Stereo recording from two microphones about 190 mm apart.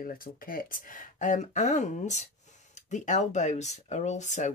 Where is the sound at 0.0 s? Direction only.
50° left (ahead or behind).